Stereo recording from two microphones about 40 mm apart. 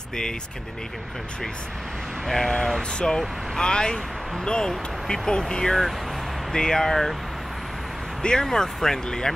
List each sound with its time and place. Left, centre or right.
2.2 s speech: centre
8.2 s speech: left